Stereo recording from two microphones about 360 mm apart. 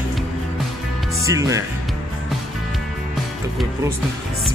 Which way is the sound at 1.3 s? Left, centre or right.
Centre.